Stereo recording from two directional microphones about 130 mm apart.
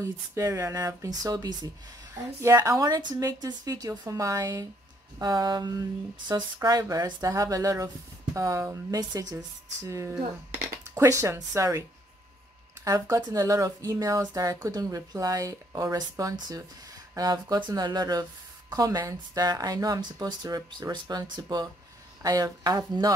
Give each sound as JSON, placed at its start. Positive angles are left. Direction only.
{"t": 0.0, "sound": "speech", "side_deg": -20}
{"t": 12.8, "sound": "speech", "side_deg": -25}